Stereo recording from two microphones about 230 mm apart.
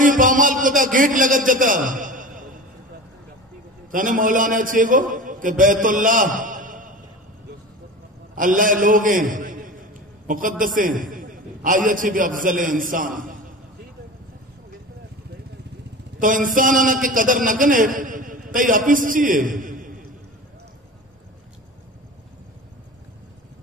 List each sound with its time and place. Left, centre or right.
0.0 s a man's voice: right
3.9 s a man's voice: right
8.4 s a man's voice: right
16.2 s a man's voice: right